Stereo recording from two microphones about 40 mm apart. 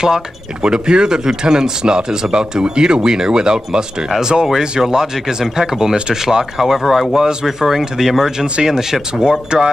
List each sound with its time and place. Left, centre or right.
0.0 s speech: centre